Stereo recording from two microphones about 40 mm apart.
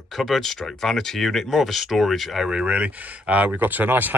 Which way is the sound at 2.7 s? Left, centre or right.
Right.